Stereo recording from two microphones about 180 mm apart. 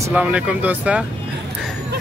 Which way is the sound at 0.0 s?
10° right (ahead or behind).